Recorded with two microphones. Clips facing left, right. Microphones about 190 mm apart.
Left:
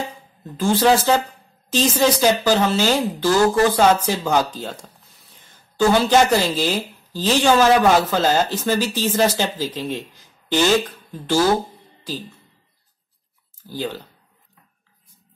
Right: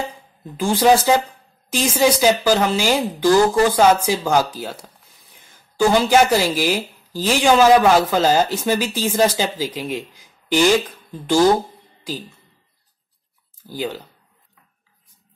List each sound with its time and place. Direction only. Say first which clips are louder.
0.6 s speech: right 1 dB; 15° right (ahead or behind)
13.7 s speech: right 1 dB; 10° right (ahead or behind)